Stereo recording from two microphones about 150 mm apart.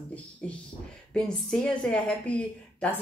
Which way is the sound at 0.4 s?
10° left (ahead or behind).